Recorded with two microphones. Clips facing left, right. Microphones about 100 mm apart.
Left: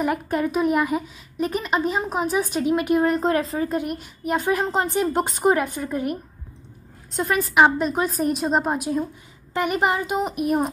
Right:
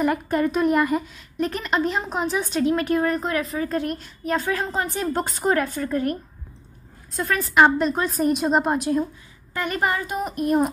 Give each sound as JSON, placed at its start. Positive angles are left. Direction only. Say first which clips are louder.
{"t": 0.0, "sound": "a woman's voice", "louder": "right 1 dB", "side_deg": 5}
{"t": 3.6, "sound": "a woman's voice", "louder": "even", "side_deg": 10}
{"t": 9.5, "sound": "a woman's voice", "louder": "left 3 dB", "side_deg": 20}
{"t": 10.4, "sound": "speech", "louder": "right 3 dB", "side_deg": 5}